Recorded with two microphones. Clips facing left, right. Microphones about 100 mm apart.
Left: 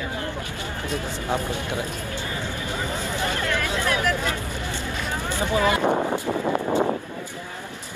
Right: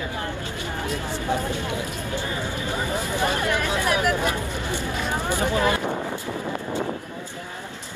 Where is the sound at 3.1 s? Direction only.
20° right (ahead or behind).